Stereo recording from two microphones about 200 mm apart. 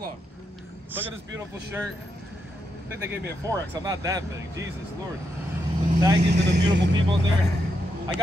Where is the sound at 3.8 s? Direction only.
15° right (ahead or behind).